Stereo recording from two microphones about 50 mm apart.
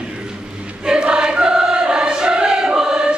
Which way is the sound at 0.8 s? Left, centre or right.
Centre.